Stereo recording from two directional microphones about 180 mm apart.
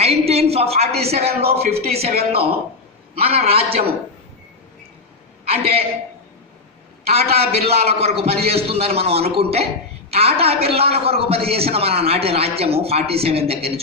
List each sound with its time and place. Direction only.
0.0 s a woman's voice: 35° right (ahead or behind)
5.4 s a man's voice: 35° right (ahead or behind)
7.2 s a man's voice: 35° right (ahead or behind)